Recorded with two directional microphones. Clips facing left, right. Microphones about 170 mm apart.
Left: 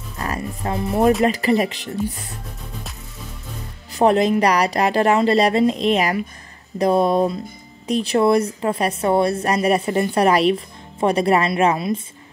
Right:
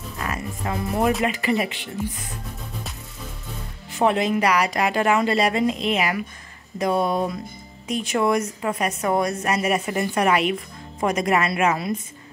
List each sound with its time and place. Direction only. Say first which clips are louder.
0.2 s music: left 3 dB; 35° left (ahead or behind)
1.2 s a woman's voice: left 5 dB; 35° left (ahead or behind)
3.9 s a woman's voice: left 5 dB; 35° left (ahead or behind)